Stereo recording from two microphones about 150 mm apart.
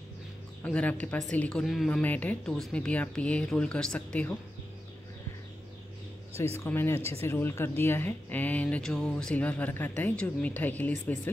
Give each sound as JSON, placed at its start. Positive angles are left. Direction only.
{"t": 0.7, "sound": "speech", "side_deg": 10}
{"t": 6.6, "sound": "speech", "side_deg": 15}